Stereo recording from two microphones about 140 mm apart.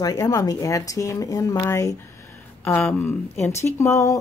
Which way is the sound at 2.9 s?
15° left (ahead or behind).